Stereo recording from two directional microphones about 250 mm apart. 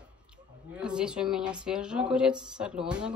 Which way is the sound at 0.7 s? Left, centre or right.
Centre.